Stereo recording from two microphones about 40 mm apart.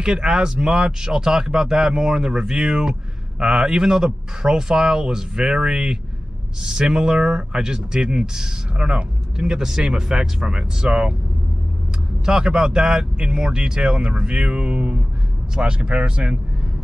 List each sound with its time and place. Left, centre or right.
0.0 s speech: right
12.3 s speech: centre